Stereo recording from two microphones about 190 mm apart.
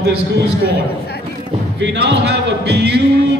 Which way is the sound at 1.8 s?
65° right (ahead or behind).